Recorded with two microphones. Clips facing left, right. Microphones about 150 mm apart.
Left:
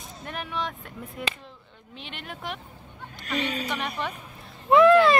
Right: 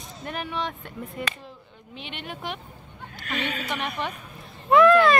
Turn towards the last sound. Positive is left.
turn(degrees=25)  # may be behind; listen again after turning